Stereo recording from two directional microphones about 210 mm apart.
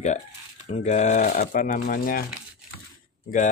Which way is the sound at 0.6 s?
30° left (ahead or behind).